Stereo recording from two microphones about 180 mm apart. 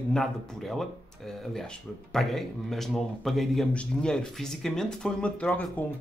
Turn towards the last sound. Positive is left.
turn(degrees=10)  # may be behind; listen again after turning